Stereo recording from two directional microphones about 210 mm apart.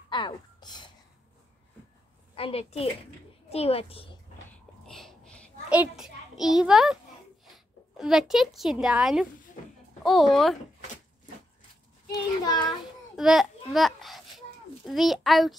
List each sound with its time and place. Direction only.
0.1 s a sound: 20° left (ahead or behind)
2.3 s a woman's voice: 30° left (ahead or behind)
4.8 s a sound: 5° left (ahead or behind)
5.7 s a child's voice: 5° right (ahead or behind)
12.4 s a child's voice: 20° left (ahead or behind)
13.1 s babbling: centre (ahead or behind)
14.9 s a child's voice: centre (ahead or behind)